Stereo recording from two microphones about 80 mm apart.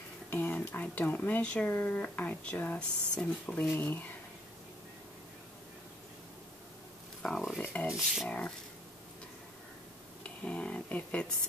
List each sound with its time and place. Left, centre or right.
0.3 s speech: left
7.2 s speech: centre
7.6 s speech: centre
7.9 s speech: centre
8.3 s speech: centre
10.2 s speech: centre